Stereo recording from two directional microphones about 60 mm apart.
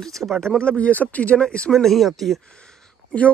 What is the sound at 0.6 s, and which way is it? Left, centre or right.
Speech, centre.